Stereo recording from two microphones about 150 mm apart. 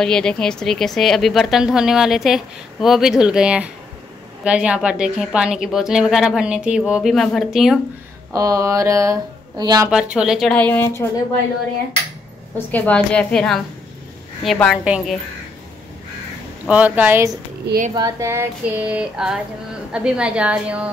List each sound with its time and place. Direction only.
0.0 s a woman's voice: 5° left (ahead or behind)
8.3 s speech: 25° right (ahead or behind)
9.8 s a woman's voice: 5° right (ahead or behind); by 11.1 s 15° left (ahead or behind)
12.5 s a woman's voice: 10° left (ahead or behind)
16.6 s female singing: 10° right (ahead or behind)